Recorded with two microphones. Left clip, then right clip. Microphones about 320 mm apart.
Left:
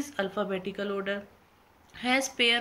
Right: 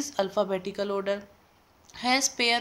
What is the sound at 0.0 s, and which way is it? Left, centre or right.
Speech, centre.